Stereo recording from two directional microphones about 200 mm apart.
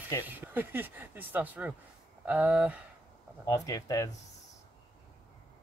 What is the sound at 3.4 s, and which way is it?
Speech, 20° left (ahead or behind).